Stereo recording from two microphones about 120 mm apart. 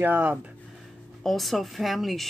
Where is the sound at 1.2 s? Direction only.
Centre (ahead or behind).